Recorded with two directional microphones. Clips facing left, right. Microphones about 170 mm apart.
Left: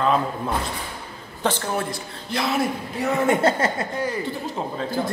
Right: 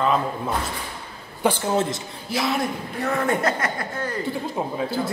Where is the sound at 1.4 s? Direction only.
15° right (ahead or behind).